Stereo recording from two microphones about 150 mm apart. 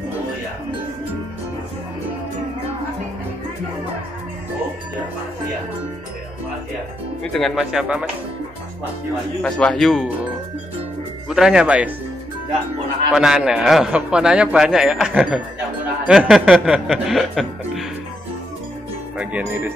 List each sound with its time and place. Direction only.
7.3 s a man's voice: centre (ahead or behind)
9.4 s a man's voice: 5° left (ahead or behind)
11.2 s a man's voice: 5° right (ahead or behind)
13.1 s a man's voice: 5° right (ahead or behind)
19.1 s speech: 10° right (ahead or behind)